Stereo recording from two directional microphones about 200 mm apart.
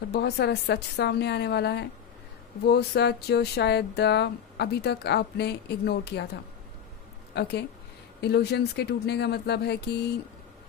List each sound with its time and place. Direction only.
0.1 s speech: 55° left (ahead or behind)
7.3 s speech: 60° left (ahead or behind)